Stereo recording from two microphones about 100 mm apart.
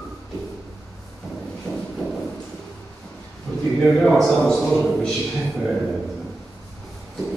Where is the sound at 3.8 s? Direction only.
5° left (ahead or behind).